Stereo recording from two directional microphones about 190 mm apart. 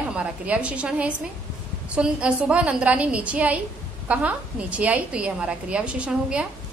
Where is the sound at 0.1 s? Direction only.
5° right (ahead or behind).